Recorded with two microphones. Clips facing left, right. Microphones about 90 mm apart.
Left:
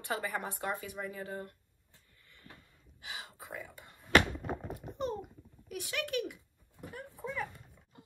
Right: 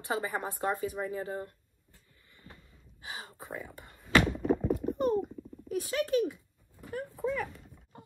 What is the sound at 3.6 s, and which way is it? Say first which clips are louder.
Beatboxing: right 3 dB; 55° right (ahead or behind).